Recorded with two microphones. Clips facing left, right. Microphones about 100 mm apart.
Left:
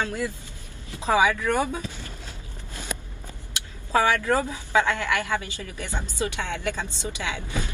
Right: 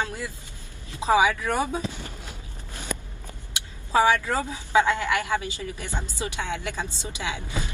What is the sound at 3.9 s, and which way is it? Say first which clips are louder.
A woman's voice: even; 20° right (ahead or behind).